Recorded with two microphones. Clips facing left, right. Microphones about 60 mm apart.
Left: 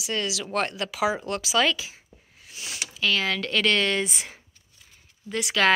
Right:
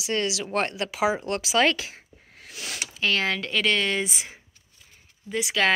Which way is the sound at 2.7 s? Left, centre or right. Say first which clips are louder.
Even; right.